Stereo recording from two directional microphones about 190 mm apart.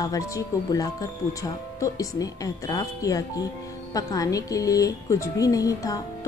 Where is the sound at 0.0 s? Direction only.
20° left (ahead or behind).